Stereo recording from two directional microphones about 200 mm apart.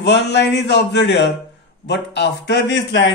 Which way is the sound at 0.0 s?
60° left (ahead or behind).